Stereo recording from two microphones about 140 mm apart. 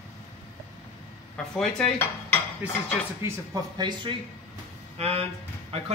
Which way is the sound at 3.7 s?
30° right (ahead or behind).